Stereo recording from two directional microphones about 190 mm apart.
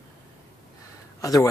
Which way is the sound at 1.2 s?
20° left (ahead or behind).